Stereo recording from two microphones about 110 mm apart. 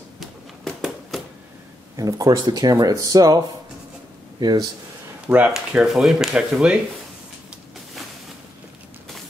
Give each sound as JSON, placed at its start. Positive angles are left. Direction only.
{"t": 0.2, "sound": "a sound", "side_deg": 0}
{"t": 2.0, "sound": "speech", "side_deg": -30}
{"t": 5.3, "sound": "speech", "side_deg": -15}